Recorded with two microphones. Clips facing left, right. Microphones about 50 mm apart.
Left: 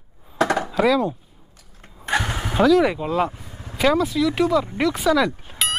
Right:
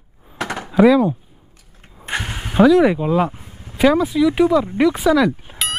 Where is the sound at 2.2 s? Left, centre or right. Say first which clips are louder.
Left 3 dB; left.